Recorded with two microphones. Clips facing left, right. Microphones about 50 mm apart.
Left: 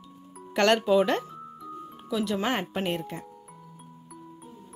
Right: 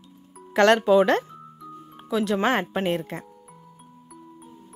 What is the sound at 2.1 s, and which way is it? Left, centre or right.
Speech, right.